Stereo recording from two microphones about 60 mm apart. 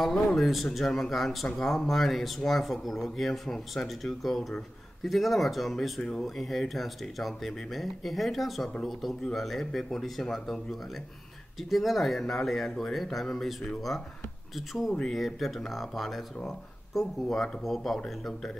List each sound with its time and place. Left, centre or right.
0.0 s speech: centre